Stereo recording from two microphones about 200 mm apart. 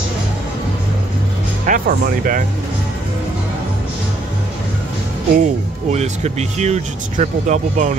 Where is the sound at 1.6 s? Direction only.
45° right (ahead or behind).